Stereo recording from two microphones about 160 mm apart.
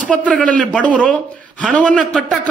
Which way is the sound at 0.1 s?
5° left (ahead or behind).